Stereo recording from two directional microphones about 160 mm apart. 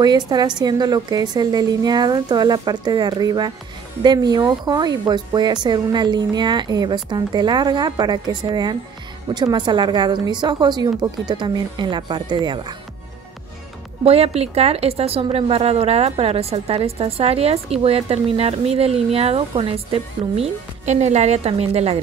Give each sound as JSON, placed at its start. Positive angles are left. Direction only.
{"t": 0.0, "sound": "speech", "side_deg": -25}
{"t": 14.0, "sound": "a woman's voice", "side_deg": -40}